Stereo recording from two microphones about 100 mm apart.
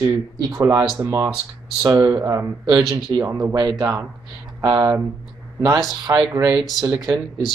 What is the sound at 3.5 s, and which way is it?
Speech, 40° right (ahead or behind).